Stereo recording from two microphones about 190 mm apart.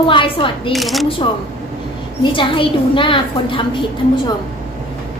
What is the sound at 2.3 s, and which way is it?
A woman's voice, 25° left (ahead or behind).